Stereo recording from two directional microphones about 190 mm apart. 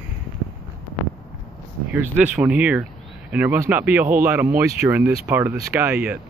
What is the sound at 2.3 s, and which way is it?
Speech, 5° right (ahead or behind).